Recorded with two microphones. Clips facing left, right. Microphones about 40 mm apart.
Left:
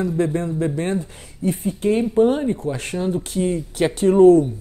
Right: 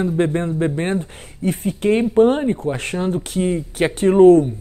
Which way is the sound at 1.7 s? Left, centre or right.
Right.